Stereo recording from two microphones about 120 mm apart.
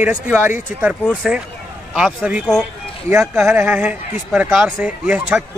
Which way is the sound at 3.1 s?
20° right (ahead or behind).